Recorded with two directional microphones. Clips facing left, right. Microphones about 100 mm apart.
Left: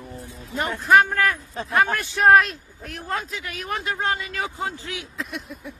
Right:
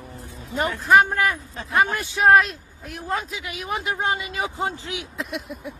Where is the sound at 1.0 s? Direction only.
15° right (ahead or behind).